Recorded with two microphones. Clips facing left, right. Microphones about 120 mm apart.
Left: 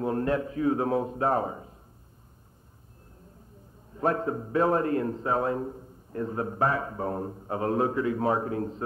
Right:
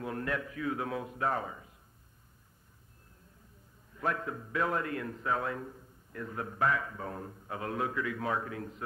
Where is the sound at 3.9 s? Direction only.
35° left (ahead or behind).